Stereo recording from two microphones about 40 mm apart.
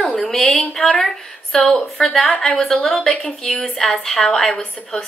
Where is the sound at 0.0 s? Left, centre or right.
Centre.